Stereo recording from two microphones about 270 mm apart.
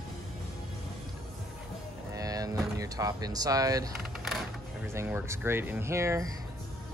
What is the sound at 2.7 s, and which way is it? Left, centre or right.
Speech, centre.